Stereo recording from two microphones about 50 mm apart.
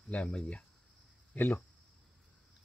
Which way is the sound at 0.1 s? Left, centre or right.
Left.